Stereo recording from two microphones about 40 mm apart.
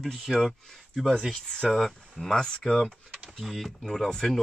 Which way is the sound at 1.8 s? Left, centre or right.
Centre.